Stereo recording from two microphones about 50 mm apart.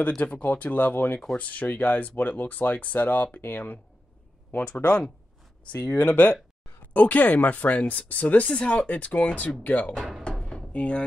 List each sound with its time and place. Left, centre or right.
0.2 s speech: left
1.3 s speech: left
4.6 s speech: left
5.8 s speech: left
8.5 s speech: left
10.2 s a sound: centre
10.7 s speech: left